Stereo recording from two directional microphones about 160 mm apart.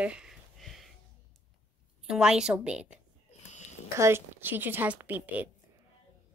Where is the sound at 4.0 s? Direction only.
15° right (ahead or behind).